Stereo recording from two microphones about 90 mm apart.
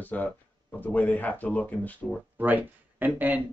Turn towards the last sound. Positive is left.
turn(degrees=-20)  # may be behind; listen again after turning